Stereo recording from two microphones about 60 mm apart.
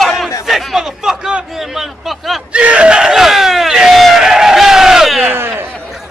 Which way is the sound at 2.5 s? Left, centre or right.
Centre.